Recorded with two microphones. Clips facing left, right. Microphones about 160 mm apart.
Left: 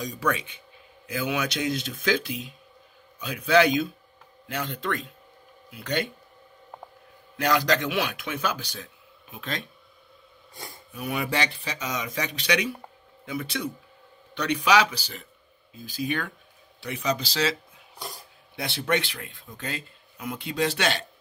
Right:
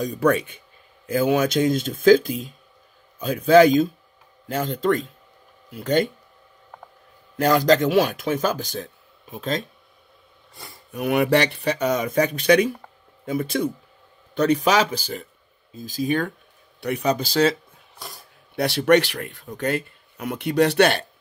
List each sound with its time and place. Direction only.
0.0 s speech: 55° right (ahead or behind)
7.3 s speech: 45° right (ahead or behind)
10.5 s gasp: centre (ahead or behind)
10.9 s speech: 60° right (ahead or behind)
14.3 s speech: 45° right (ahead or behind)
16.8 s speech: 60° right (ahead or behind)
17.9 s speech: centre (ahead or behind)
18.6 s speech: 70° right (ahead or behind)